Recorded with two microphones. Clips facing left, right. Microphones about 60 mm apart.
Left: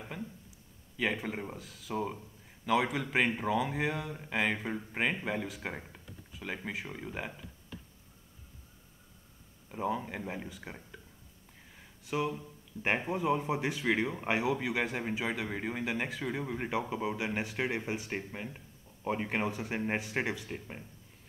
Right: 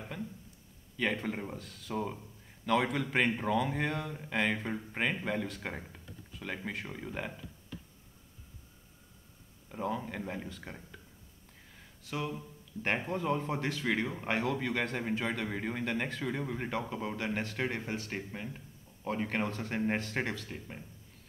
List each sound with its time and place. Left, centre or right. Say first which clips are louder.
0.1 s a man's voice: right 1 dB; centre
9.7 s speech: left 2 dB; centre
11.7 s a sound: left 4 dB; centre
12.8 s speech: left 2 dB; centre